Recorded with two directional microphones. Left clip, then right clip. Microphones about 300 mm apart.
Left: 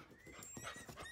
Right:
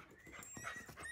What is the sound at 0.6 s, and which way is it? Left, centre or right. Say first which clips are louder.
Horse: right 2 dB; left.